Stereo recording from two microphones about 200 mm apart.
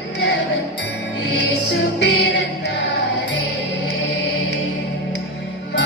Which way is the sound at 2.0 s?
65° left (ahead or behind).